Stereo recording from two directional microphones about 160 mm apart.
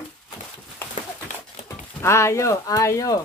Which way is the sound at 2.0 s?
15° left (ahead or behind).